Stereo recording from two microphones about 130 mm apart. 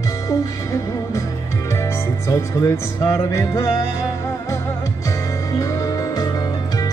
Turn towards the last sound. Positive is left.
turn(degrees=30)  # may be behind; listen again after turning